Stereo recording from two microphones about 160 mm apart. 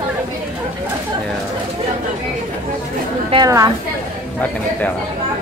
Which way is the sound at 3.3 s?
25° right (ahead or behind).